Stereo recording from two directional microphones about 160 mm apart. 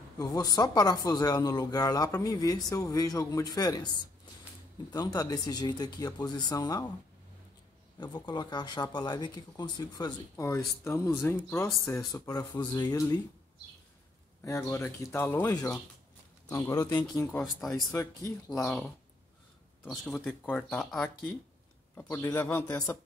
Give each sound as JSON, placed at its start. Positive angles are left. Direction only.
{"t": 0.2, "sound": "speech", "side_deg": 25}
{"t": 4.9, "sound": "speech", "side_deg": 25}
{"t": 8.0, "sound": "speech", "side_deg": 25}
{"t": 14.7, "sound": "speech", "side_deg": 20}
{"t": 17.4, "sound": "speech", "side_deg": 5}
{"t": 17.9, "sound": "speech", "side_deg": 20}
{"t": 18.6, "sound": "speech", "side_deg": 5}
{"t": 19.9, "sound": "speech", "side_deg": 5}
{"t": 22.1, "sound": "speech", "side_deg": 15}